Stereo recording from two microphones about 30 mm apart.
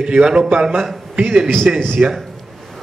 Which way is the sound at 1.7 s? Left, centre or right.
Right.